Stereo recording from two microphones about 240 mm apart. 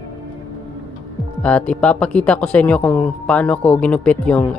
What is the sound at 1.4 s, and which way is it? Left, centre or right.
Speech, centre.